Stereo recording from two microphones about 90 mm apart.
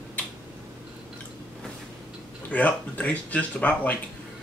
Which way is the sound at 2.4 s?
20° left (ahead or behind).